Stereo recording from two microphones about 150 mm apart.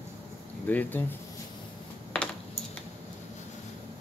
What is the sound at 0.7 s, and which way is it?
Speech, 10° left (ahead or behind).